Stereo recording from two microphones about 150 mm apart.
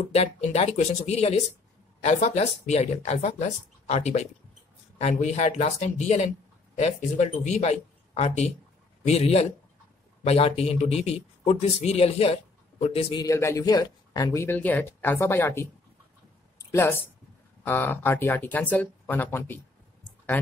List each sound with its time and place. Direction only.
0.1 s speech: 45° left (ahead or behind)
13.1 s speech: 20° left (ahead or behind)